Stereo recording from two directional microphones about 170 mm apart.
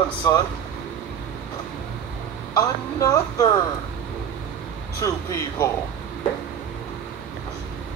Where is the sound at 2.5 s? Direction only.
20° left (ahead or behind).